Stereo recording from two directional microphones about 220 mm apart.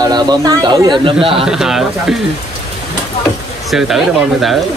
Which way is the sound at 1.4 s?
Centre (ahead or behind).